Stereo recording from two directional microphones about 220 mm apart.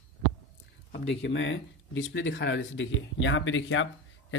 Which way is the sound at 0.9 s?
55° left (ahead or behind).